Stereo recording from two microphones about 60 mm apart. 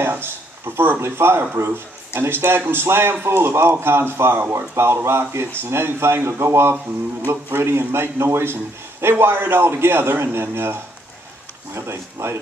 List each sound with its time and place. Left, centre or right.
0.0 s a man's voice: right